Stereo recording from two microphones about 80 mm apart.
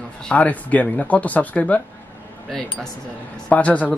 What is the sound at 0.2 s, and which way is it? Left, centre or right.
Speech, centre.